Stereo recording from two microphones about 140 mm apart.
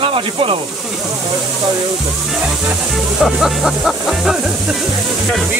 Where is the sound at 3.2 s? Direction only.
Centre (ahead or behind).